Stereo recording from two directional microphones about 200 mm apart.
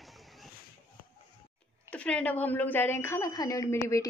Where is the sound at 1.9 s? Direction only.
5° left (ahead or behind).